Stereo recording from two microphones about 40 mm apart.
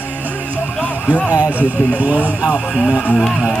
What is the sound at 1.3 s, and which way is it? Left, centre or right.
Speech, right.